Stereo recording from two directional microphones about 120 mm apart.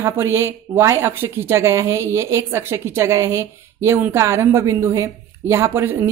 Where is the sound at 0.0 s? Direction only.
20° right (ahead or behind).